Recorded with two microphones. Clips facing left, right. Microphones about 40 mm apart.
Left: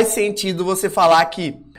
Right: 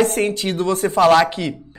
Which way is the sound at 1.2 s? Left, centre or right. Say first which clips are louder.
Even; centre.